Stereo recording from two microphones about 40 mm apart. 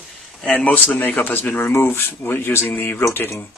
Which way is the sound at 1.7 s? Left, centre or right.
Left.